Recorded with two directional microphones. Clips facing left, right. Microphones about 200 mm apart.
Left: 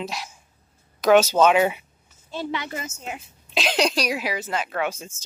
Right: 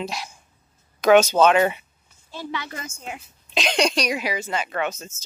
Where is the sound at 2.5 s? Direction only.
25° left (ahead or behind).